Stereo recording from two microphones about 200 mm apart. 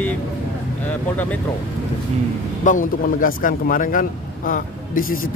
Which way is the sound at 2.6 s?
40° left (ahead or behind).